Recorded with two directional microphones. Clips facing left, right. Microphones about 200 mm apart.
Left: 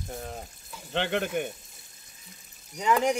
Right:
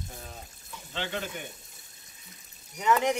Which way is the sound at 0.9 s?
60° left (ahead or behind).